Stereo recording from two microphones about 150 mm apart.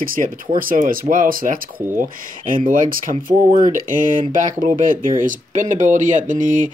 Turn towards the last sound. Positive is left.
turn(degrees=-60)  # may be behind; listen again after turning